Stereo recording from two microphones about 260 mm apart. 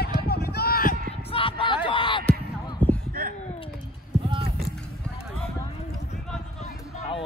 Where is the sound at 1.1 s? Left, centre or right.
Centre.